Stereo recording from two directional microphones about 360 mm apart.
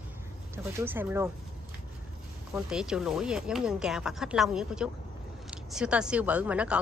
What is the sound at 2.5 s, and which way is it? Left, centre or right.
A woman's voice, centre.